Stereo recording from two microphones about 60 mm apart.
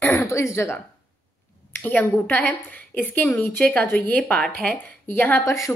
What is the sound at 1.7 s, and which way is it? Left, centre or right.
A woman's voice, left.